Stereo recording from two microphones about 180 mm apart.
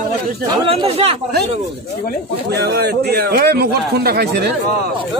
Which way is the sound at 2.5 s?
65° right (ahead or behind).